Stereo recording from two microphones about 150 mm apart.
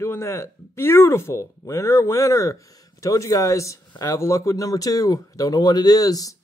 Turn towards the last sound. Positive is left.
turn(degrees=25)  # may be behind; listen again after turning